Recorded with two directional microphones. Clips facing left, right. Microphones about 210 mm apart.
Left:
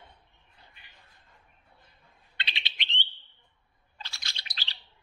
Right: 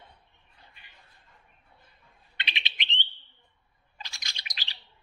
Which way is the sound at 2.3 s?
15° right (ahead or behind).